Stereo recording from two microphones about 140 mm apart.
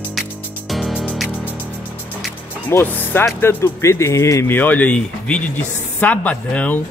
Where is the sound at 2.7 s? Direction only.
15° left (ahead or behind).